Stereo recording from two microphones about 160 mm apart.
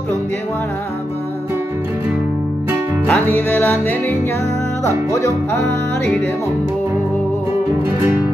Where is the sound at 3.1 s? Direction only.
10° left (ahead or behind).